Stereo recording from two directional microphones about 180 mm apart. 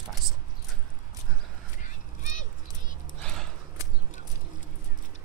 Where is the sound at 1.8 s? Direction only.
45° left (ahead or behind).